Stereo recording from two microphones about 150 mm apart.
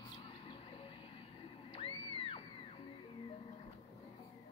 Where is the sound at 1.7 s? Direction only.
40° left (ahead or behind).